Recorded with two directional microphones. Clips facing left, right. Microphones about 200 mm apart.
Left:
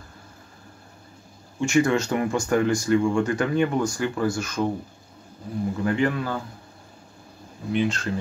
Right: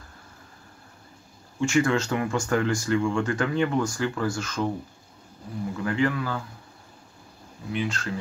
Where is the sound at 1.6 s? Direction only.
15° left (ahead or behind).